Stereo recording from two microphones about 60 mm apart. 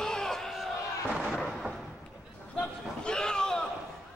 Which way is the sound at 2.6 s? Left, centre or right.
Centre.